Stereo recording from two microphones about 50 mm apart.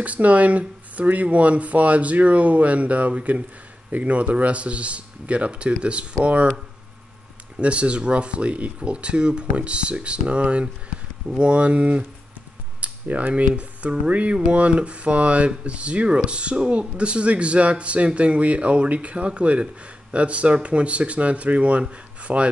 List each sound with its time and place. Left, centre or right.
0.0 s a man's voice: right
7.5 s a man's voice: right